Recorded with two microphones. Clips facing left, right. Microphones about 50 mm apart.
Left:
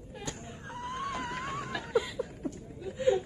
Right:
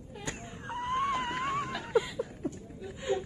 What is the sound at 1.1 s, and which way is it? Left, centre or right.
Wail, centre.